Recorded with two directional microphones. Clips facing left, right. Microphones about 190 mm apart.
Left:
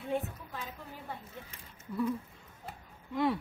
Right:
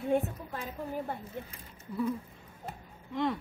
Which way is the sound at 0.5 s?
50° right (ahead or behind).